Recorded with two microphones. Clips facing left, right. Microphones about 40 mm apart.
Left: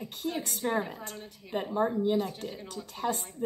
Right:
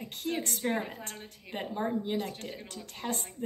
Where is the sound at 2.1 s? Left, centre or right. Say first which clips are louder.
Left 4 dB; right.